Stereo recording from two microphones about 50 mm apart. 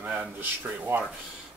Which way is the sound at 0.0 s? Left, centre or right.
Right.